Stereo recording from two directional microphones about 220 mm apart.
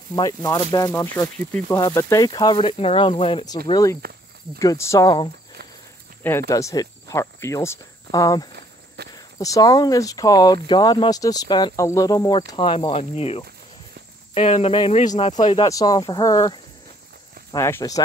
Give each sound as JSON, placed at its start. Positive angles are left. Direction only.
{"t": 0.1, "sound": "speech", "side_deg": 15}
{"t": 6.5, "sound": "speech", "side_deg": 15}